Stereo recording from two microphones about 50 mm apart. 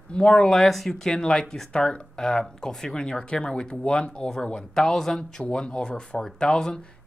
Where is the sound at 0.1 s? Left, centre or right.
Centre.